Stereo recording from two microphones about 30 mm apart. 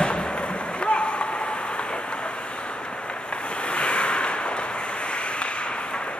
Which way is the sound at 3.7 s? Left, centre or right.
Left.